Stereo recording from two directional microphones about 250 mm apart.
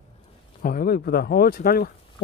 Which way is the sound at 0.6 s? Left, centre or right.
Left.